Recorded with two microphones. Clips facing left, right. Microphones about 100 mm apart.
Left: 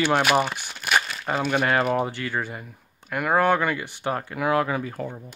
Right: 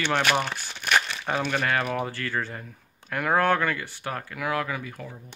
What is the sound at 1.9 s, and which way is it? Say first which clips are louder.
Speech: left 3 dB; 20° left (ahead or behind).